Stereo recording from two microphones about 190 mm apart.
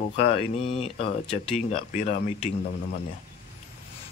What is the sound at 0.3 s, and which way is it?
Speech, 30° left (ahead or behind).